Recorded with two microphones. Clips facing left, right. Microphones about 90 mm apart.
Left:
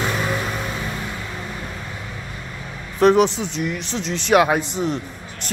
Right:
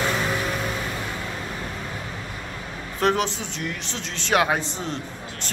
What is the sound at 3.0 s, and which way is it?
Speech, 15° left (ahead or behind).